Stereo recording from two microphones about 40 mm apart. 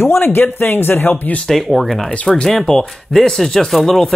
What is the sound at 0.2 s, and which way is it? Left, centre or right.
Speech, left.